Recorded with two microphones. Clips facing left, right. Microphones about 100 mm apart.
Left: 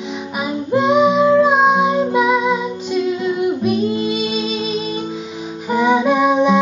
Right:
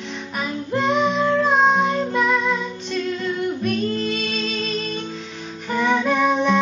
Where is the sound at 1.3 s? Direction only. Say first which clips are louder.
Left 4 dB; 10° left (ahead or behind).